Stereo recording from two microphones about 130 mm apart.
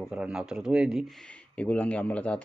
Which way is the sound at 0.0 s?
5° right (ahead or behind).